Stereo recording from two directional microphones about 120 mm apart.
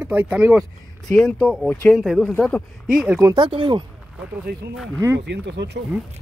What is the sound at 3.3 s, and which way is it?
Speech, 45° right (ahead or behind).